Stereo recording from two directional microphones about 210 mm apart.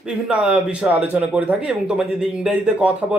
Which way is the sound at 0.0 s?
5° right (ahead or behind).